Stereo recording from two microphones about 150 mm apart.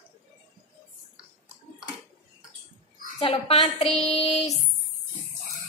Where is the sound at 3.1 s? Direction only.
40° left (ahead or behind).